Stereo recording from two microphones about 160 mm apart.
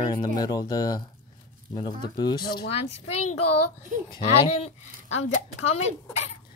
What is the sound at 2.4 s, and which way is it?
Speech, 75° left (ahead or behind).